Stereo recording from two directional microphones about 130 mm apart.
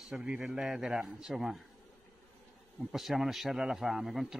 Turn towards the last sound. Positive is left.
turn(degrees=0)  # may be behind; listen again after turning